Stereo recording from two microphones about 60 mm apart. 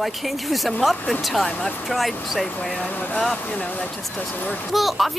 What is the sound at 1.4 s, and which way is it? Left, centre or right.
Speech, left.